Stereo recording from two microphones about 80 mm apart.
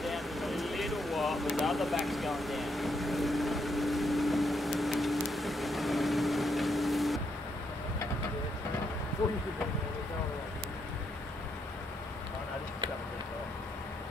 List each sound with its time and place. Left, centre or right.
0.0 s vehicle: centre